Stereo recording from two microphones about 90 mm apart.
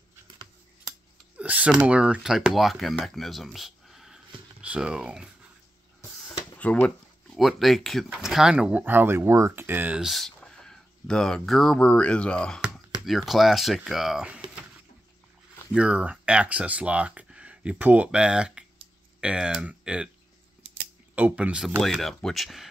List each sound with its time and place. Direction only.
1.3 s a sound: 15° right (ahead or behind)
1.8 s speech: 10° right (ahead or behind)
6.6 s a sound: 15° left (ahead or behind)
7.3 s speech: centre (ahead or behind)
8.8 s speech: 25° right (ahead or behind)
9.9 s speech: centre (ahead or behind)
13.0 s speech: centre (ahead or behind)
15.7 s speech: 10° right (ahead or behind)
21.1 s speech: 15° right (ahead or behind)
21.6 s speech: 5° left (ahead or behind)